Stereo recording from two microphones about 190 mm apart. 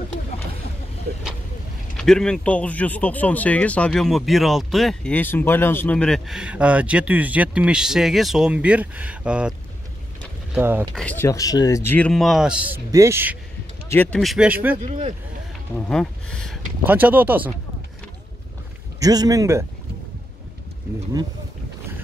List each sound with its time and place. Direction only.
2.0 s speech: 5° left (ahead or behind)
10.5 s speech: 10° right (ahead or behind)
11.0 s speech: 10° left (ahead or behind); by 13.4 s 10° right (ahead or behind)
13.8 s speech: 10° left (ahead or behind)
14.2 s speech: 5° right (ahead or behind)
14.8 s speech: 35° right (ahead or behind)
15.7 s speech: 5° left (ahead or behind)
16.8 s speech: 10° right (ahead or behind)
18.9 s speech: 20° right (ahead or behind)